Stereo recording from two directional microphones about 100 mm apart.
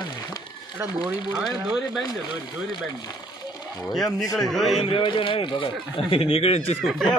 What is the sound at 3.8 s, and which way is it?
Speech, 5° left (ahead or behind).